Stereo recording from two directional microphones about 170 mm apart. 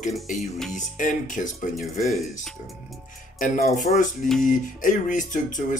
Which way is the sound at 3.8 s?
50° left (ahead or behind).